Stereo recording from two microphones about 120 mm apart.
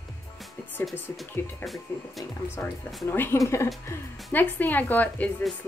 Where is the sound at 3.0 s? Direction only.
20° left (ahead or behind).